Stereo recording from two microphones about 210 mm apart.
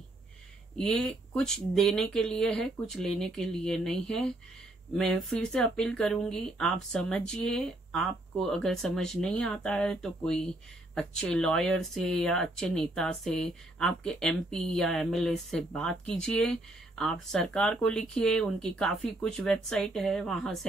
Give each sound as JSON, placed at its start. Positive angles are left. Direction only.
{"t": 0.7, "sound": "speech", "side_deg": 5}